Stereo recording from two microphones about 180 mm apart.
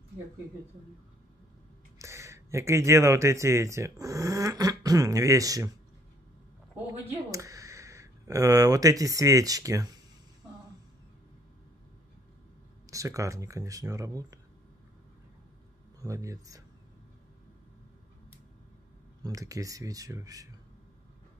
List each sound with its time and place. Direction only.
2.0 s speech: 15° right (ahead or behind)
7.1 s speech: 20° right (ahead or behind)
12.9 s speech: 15° right (ahead or behind)
16.0 s speech: 15° right (ahead or behind)
19.2 s speech: 20° right (ahead or behind)